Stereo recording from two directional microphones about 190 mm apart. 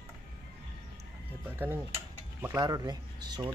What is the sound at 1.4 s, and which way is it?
Speech, 10° right (ahead or behind).